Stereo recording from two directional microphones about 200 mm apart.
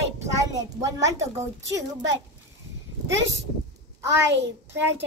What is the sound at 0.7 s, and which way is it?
Speech, 15° right (ahead or behind).